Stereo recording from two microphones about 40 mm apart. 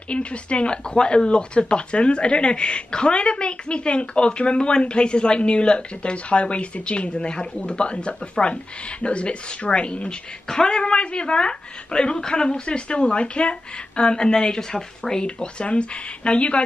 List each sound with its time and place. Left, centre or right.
0.1 s speech: left